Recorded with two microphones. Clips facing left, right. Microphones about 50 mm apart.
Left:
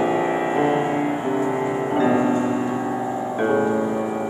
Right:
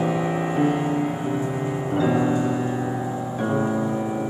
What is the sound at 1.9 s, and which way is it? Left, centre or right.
Music, left.